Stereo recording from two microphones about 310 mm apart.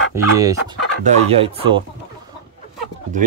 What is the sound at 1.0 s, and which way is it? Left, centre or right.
Speech, centre.